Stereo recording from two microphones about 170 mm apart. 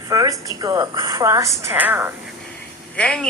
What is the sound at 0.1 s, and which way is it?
A woman's voice, 20° right (ahead or behind).